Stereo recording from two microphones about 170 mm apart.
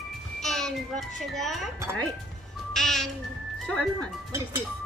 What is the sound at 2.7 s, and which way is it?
Music, 5° left (ahead or behind).